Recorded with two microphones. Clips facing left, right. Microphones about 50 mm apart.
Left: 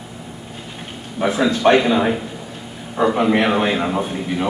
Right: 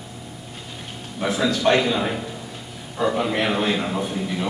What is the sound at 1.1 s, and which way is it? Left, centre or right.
A man's voice, left.